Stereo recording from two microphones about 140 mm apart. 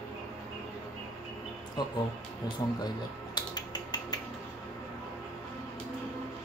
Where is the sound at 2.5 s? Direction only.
30° left (ahead or behind).